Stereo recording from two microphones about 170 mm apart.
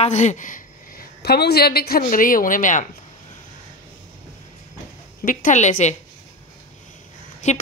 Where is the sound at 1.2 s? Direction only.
70° left (ahead or behind); by 2.9 s 50° left (ahead or behind).